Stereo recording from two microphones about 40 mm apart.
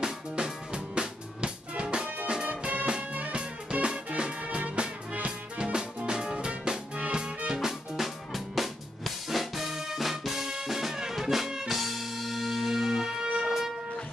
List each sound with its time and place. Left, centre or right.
0.0 s drum kit: right
2.2 s music: right
7.5 s music: centre